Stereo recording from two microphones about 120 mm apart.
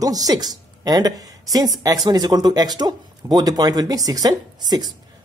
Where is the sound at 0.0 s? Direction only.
30° right (ahead or behind).